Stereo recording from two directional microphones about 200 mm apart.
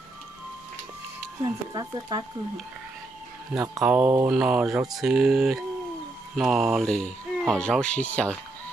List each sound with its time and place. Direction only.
1.4 s speech: 20° right (ahead or behind)
3.5 s speech: 10° right (ahead or behind); by 8.4 s 5° left (ahead or behind)